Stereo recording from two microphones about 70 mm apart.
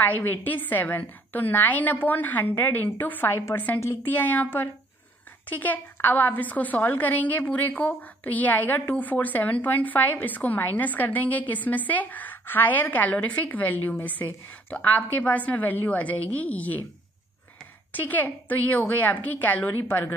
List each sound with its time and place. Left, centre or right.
0.0 s a woman's voice: left
17.9 s a woman's voice: left